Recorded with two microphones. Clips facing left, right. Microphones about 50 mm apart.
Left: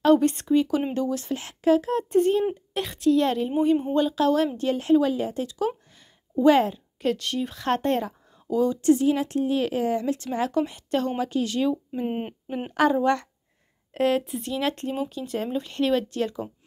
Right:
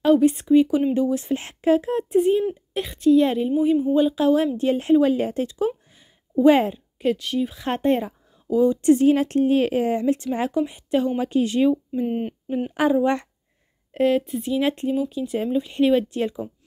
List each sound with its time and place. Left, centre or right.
0.0 s speech: centre
2.1 s speech: centre; by 5.1 s right
5.1 s speech: right
6.3 s speech: right
8.8 s speech: right
10.5 s speech: centre
11.1 s speech: right
11.9 s speech: centre
12.7 s speech: centre